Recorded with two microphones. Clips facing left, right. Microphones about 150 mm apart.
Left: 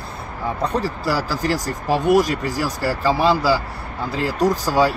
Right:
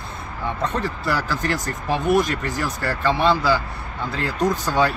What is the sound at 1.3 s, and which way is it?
Speech, 5° left (ahead or behind).